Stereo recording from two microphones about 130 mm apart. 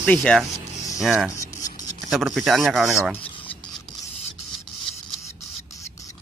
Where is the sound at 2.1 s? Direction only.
Centre (ahead or behind).